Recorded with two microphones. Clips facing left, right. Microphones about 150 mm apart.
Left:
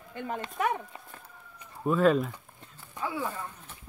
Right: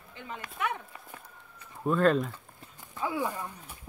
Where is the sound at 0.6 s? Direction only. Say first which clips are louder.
Left 4 dB; 40° left (ahead or behind).